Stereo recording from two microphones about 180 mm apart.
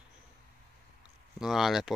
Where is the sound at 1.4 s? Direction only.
Centre (ahead or behind).